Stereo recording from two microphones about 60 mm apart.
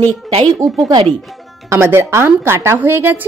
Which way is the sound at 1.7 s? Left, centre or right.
Right.